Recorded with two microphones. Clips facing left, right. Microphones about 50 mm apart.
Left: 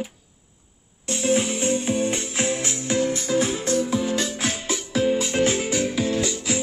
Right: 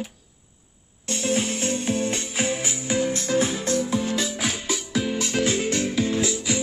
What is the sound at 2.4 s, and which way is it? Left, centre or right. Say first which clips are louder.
Music: even; centre.